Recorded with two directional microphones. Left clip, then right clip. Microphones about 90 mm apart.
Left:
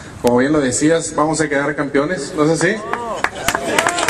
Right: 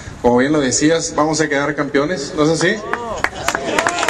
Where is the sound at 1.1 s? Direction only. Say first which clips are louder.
Even; 30° right (ahead or behind).